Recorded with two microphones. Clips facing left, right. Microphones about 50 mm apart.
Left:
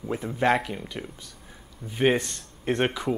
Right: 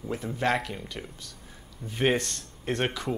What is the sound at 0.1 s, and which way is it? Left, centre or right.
Speech, left.